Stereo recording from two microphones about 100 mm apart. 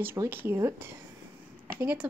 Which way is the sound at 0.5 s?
25° right (ahead or behind).